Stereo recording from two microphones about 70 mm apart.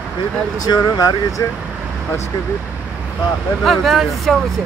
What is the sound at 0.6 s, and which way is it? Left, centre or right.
Speech, left.